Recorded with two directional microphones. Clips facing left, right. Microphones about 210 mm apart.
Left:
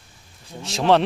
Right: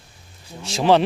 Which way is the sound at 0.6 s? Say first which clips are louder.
Right 1 dB; centre (ahead or behind).